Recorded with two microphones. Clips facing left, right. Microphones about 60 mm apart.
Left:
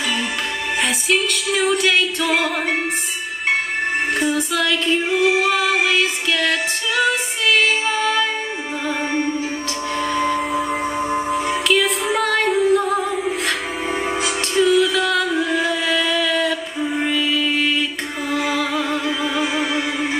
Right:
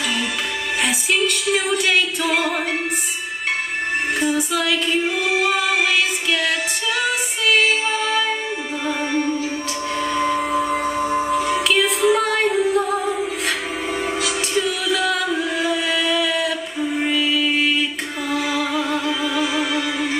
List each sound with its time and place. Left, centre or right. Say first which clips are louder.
0.8 s music: even; centre
4.3 s music: left 1 dB; centre
8.8 s music: even; left
9.9 s music: even; centre
11.0 s music: even; centre
11.5 s music: left 1 dB; centre
14.5 s music: left 8 dB; centre
16.9 s mantra: even; centre
18.7 s music: even; centre